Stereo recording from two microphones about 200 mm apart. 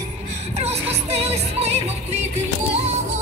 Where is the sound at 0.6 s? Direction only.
30° right (ahead or behind).